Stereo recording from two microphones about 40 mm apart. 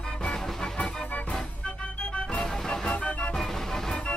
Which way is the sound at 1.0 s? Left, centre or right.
Left.